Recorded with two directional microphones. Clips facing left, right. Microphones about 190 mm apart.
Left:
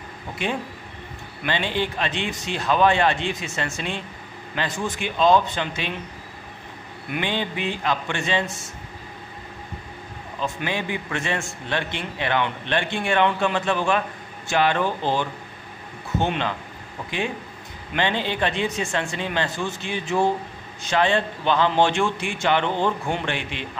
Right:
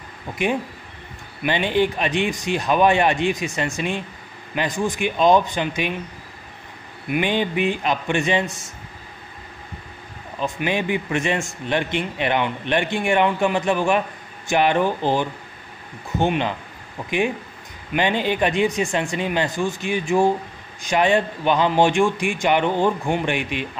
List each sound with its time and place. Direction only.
1.4 s a man's voice: 15° right (ahead or behind)
7.1 s a man's voice: 15° right (ahead or behind)
10.4 s a man's voice: 15° right (ahead or behind)
17.9 s a man's voice: 15° right (ahead or behind)